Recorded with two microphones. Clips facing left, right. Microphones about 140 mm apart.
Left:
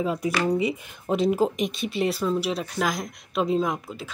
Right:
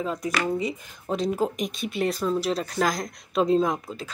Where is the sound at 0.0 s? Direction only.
10° left (ahead or behind).